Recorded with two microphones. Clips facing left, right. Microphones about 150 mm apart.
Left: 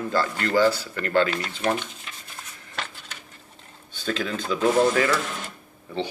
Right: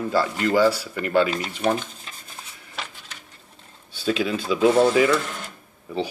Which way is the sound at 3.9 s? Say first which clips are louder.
Right 4 dB; 10° right (ahead or behind).